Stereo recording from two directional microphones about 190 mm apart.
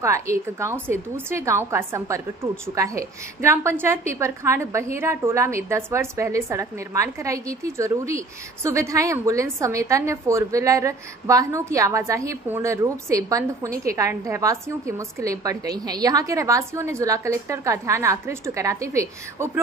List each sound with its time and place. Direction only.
0.0 s a woman's voice: 15° right (ahead or behind)